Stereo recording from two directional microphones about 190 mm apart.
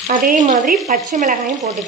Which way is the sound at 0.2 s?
45° right (ahead or behind).